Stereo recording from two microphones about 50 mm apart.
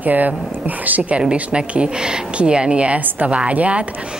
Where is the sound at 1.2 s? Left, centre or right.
Centre.